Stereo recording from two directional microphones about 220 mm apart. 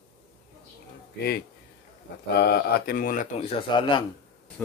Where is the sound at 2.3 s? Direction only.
45° left (ahead or behind); by 4.0 s 25° left (ahead or behind).